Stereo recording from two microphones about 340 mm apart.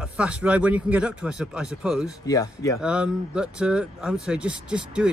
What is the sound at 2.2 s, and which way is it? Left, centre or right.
Speech, centre.